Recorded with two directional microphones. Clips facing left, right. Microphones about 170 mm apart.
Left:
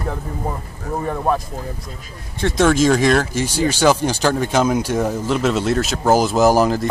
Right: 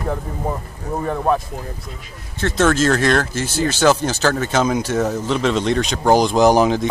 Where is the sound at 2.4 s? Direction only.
10° left (ahead or behind).